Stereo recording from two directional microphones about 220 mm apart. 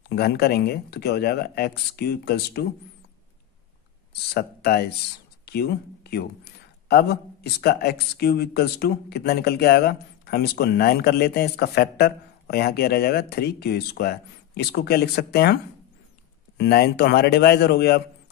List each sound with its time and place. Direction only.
0.1 s speech: 45° left (ahead or behind)
4.1 s speech: 45° left (ahead or behind)
16.5 s speech: 45° left (ahead or behind)